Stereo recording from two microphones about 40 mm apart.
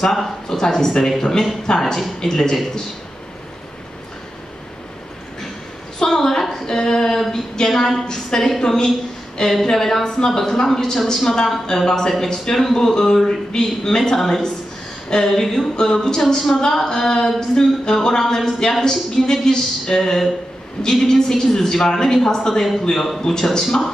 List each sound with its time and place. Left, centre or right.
0.1 s speech: centre
5.9 s a sound: centre
7.6 s speech: centre
22.8 s speech: centre